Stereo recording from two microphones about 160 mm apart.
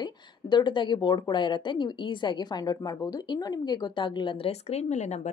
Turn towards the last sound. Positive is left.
turn(degrees=45)  # may be behind; listen again after turning